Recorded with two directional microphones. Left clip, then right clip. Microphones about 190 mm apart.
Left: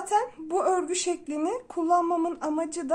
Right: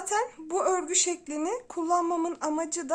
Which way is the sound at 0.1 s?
20° right (ahead or behind).